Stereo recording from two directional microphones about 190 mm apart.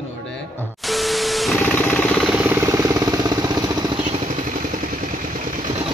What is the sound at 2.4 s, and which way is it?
Vehicle, 10° right (ahead or behind).